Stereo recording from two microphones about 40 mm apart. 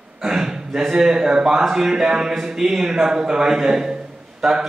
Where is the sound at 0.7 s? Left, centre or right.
Centre.